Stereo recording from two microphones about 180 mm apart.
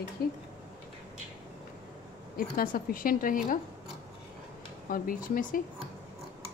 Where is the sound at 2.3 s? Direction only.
55° left (ahead or behind).